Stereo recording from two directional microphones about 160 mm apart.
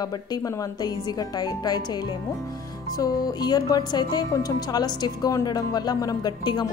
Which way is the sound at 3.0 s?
25° left (ahead or behind).